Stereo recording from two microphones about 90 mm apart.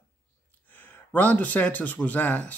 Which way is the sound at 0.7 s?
20° left (ahead or behind).